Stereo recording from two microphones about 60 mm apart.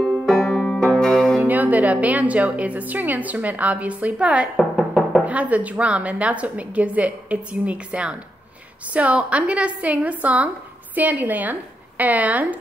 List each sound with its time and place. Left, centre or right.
0.3 s banjo: centre
1.4 s a woman's voice: right
4.6 s music: centre
5.2 s a woman's voice: right